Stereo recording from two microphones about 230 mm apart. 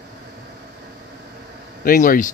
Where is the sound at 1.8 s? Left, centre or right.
Left.